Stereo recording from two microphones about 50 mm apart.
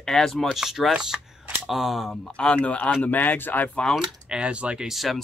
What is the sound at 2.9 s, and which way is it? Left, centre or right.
Speech, left.